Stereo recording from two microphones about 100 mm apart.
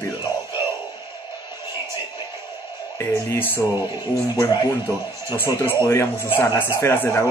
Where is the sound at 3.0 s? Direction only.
20° left (ahead or behind).